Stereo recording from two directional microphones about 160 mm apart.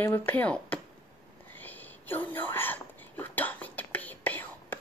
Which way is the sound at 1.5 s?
10° left (ahead or behind).